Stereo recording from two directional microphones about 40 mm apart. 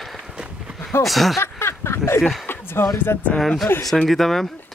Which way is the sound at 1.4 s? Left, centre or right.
Left.